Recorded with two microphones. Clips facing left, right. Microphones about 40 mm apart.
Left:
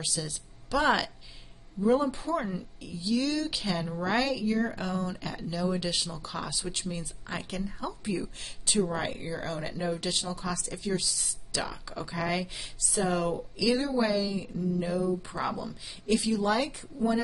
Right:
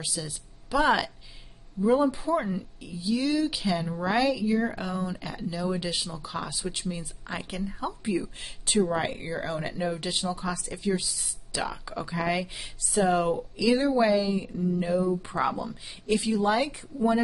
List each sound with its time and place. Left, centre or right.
0.0 s a woman's voice: centre
12.9 s a woman's voice: right